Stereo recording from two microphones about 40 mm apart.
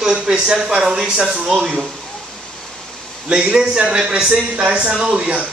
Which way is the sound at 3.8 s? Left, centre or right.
Right.